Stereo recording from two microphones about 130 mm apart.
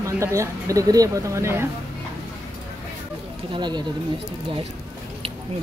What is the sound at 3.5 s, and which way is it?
Speech, 35° right (ahead or behind).